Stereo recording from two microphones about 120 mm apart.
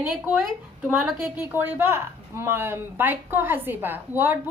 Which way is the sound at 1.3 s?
15° right (ahead or behind).